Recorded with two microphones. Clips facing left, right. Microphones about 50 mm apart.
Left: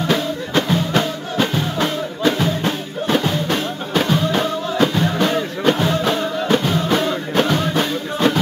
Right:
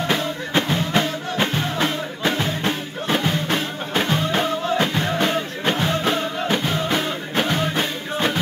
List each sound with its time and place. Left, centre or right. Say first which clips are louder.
0.1 s music: left 4 dB; right
6.5 s music: left 5 dB; centre